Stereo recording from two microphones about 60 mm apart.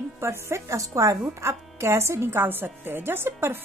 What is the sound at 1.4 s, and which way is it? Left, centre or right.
A woman's voice, right.